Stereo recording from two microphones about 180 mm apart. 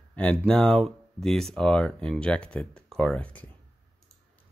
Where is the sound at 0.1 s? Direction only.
5° left (ahead or behind).